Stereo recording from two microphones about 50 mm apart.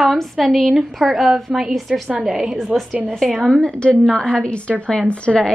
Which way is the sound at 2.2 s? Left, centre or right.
Centre.